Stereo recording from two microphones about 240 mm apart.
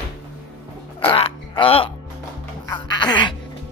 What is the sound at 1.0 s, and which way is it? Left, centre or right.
Music, left.